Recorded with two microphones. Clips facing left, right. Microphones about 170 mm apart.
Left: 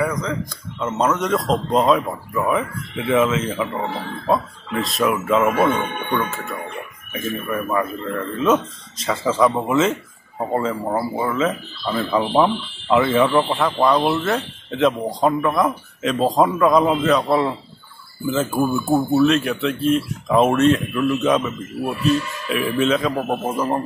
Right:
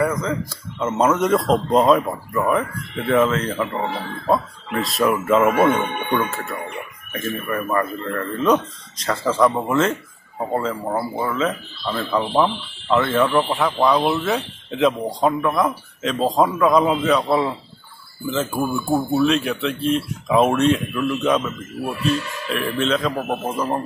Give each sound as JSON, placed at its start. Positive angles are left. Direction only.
{"t": 0.0, "sound": "speech", "side_deg": 0}